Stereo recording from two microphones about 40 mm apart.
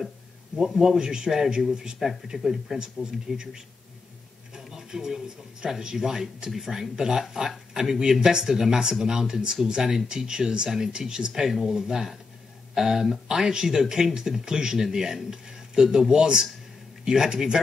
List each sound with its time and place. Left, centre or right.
0.7 s speech: centre